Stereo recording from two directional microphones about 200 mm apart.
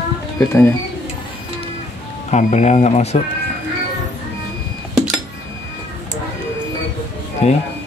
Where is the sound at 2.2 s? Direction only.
35° left (ahead or behind).